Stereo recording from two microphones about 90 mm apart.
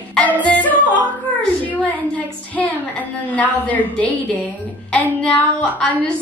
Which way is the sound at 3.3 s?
15° left (ahead or behind).